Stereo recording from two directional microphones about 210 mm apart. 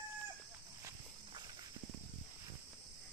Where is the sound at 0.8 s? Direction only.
15° right (ahead or behind).